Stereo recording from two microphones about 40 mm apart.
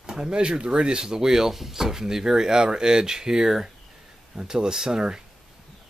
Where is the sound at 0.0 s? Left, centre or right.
Centre.